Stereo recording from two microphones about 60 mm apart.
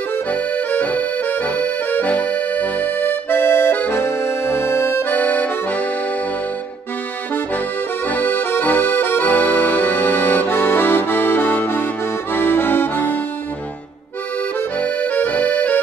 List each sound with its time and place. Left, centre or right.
0.3 s accordion: left
3.7 s music: left
4.0 s accordion: left
5.1 s accordion: left
8.1 s accordion: left
14.8 s accordion: left